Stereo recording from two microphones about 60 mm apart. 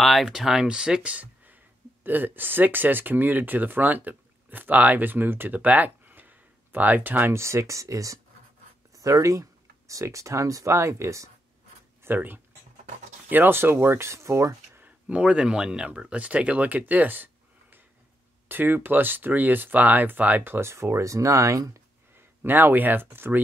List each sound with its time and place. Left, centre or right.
0.0 s speech: centre
0.3 s speech: centre; by 7.3 s right
7.3 s speech: right
12.0 s speech: right
15.0 s speech: right
20.7 s speech: right
22.4 s speech: right